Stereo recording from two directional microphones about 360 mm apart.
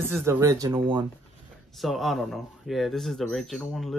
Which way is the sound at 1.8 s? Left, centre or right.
Centre.